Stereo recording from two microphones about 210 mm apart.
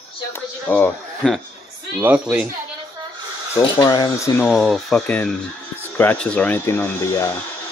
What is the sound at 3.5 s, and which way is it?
Speech, 15° left (ahead or behind).